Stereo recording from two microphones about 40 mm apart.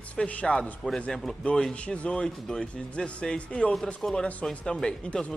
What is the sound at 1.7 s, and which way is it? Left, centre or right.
A man's voice, left.